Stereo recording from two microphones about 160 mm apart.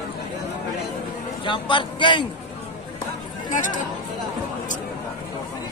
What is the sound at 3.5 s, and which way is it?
Speech, 55° left (ahead or behind).